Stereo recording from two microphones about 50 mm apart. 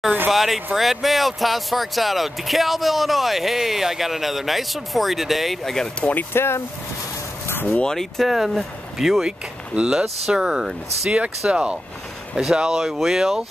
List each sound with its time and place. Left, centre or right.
0.3 s speech: centre
5.6 s speech: centre
5.9 s speech: left
6.3 s speech: left
7.4 s dog: left
7.8 s speech: centre
8.3 s speech: centre
11.1 s speech: right; by 13.4 s centre